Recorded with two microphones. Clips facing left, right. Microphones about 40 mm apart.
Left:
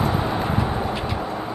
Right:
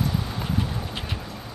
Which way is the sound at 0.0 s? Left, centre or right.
Left.